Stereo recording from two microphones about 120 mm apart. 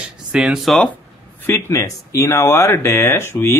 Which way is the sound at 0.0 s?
10° right (ahead or behind).